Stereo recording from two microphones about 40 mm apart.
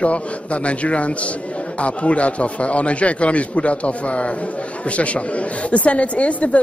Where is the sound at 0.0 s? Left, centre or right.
Left.